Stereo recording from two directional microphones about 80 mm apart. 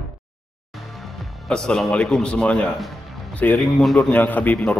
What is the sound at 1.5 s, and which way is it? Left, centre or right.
A man's voice, centre.